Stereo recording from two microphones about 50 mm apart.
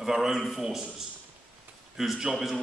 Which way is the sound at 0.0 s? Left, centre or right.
Centre.